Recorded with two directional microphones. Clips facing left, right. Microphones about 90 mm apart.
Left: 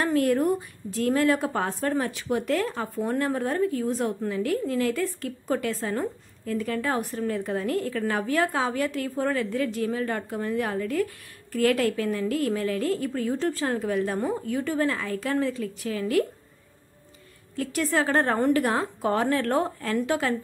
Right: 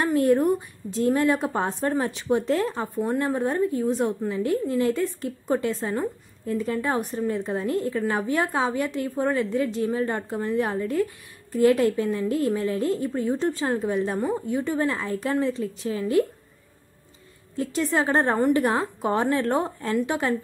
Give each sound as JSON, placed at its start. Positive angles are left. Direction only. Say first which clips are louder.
{"t": 0.0, "sound": "a woman's voice", "louder": "right 2 dB", "side_deg": -20}
{"t": 17.6, "sound": "a woman's voice", "louder": "right 1 dB", "side_deg": -20}